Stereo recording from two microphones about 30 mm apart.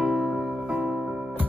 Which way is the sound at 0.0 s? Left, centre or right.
Right.